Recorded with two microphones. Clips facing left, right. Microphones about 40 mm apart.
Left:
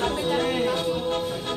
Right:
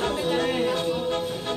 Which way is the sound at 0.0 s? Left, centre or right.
Centre.